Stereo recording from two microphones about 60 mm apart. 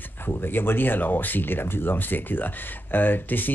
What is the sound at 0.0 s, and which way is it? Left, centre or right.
Speech, left.